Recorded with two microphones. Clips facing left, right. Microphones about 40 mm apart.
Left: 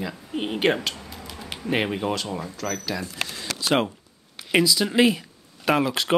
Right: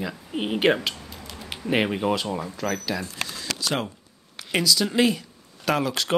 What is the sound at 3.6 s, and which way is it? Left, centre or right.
Speech, left.